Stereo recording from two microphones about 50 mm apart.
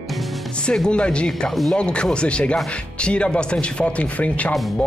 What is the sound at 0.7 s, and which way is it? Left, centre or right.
A man's voice, left.